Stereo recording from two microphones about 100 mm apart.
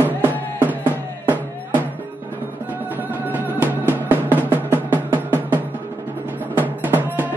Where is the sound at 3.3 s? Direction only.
20° right (ahead or behind).